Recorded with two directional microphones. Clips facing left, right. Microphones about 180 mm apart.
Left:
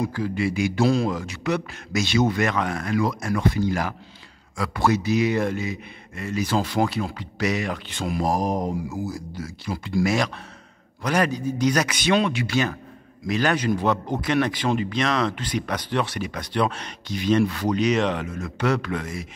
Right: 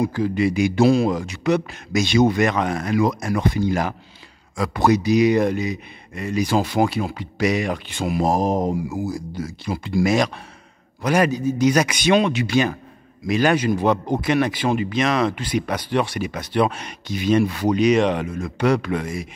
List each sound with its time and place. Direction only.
0.0 s a man's voice: 20° right (ahead or behind)
8.2 s a man's voice: 25° right (ahead or behind)